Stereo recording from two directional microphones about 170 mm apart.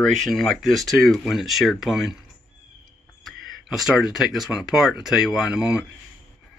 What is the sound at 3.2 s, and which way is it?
Speech, centre (ahead or behind).